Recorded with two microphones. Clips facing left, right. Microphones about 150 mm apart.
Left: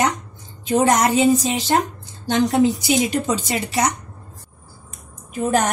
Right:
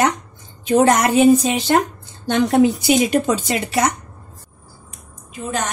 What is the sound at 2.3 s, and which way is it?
A woman's voice, 60° right (ahead or behind).